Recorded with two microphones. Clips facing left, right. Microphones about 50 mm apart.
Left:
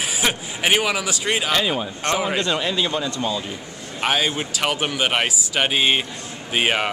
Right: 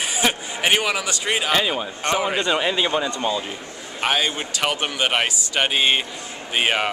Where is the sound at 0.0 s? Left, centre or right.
Centre.